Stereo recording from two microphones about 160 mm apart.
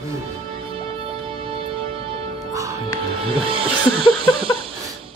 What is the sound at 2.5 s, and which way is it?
Music, 20° right (ahead or behind).